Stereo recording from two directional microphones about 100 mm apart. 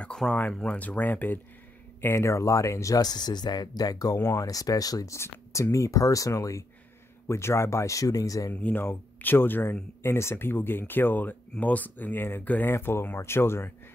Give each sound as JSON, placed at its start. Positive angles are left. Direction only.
{"t": 0.0, "sound": "speech", "side_deg": 10}
{"t": 8.5, "sound": "speech", "side_deg": 15}